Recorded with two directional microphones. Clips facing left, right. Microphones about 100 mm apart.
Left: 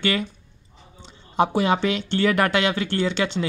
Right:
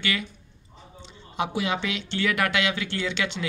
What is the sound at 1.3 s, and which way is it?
Speech, 40° left (ahead or behind).